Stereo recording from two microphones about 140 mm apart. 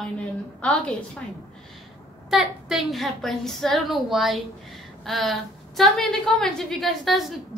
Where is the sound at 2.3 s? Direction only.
Centre (ahead or behind).